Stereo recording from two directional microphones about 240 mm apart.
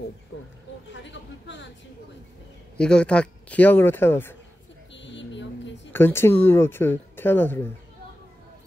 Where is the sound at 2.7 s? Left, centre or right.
Centre.